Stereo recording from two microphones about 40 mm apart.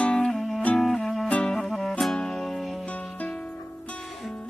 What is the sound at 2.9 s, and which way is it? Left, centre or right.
Music, left.